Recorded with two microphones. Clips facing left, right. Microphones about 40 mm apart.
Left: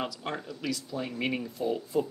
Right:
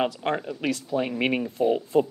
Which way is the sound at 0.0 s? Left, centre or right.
Right.